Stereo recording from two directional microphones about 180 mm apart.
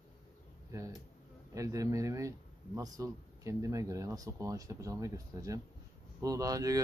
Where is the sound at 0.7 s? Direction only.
15° right (ahead or behind).